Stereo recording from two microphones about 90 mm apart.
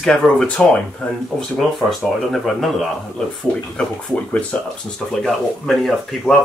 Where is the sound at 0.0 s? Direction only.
5° left (ahead or behind).